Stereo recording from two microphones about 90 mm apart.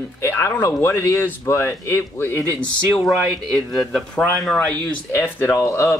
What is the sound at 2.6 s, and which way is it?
Speech, 10° left (ahead or behind).